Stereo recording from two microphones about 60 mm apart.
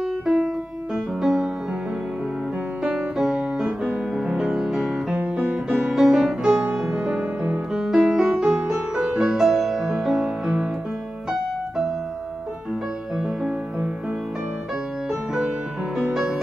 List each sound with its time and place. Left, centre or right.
0.9 s music: centre
2.8 s music: centre
16.1 s music: centre